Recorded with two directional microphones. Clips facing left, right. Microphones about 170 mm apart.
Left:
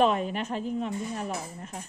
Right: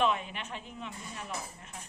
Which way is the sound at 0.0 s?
40° left (ahead or behind).